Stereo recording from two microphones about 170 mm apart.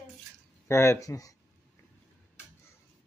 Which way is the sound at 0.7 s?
15° left (ahead or behind).